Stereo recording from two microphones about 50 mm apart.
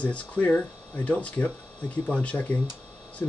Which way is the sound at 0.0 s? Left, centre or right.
Left.